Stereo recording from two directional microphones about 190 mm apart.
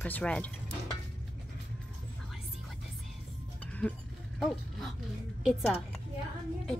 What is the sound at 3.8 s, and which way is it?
Speech, 5° left (ahead or behind).